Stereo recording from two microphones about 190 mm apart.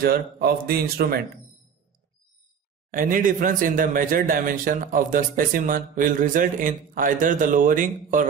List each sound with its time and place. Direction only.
0.0 s speech: 50° right (ahead or behind)
2.9 s speech: 45° right (ahead or behind)